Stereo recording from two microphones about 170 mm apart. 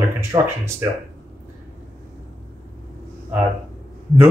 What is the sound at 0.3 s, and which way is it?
Speech, 25° right (ahead or behind).